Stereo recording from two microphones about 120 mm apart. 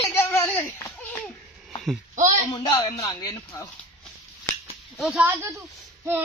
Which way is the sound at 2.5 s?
35° left (ahead or behind).